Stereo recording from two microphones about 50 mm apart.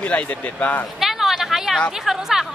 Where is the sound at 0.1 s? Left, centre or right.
Left.